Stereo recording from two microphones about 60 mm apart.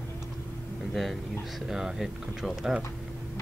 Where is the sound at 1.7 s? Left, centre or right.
Centre.